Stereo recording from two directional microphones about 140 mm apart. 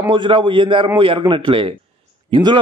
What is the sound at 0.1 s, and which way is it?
A man's voice, 35° right (ahead or behind).